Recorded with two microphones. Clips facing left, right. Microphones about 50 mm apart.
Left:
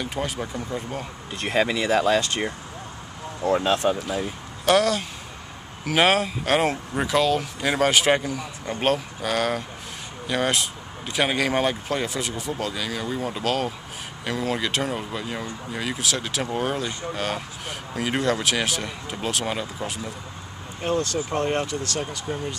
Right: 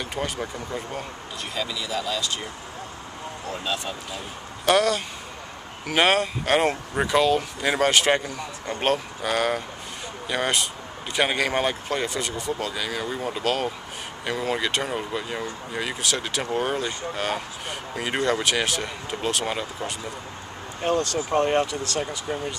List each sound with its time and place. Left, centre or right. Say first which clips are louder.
0.0 s speech: left 1 dB; centre
1.4 s speech: left 8 dB; left
4.6 s speech: left 1 dB; centre
21.4 s speech: right 4 dB; centre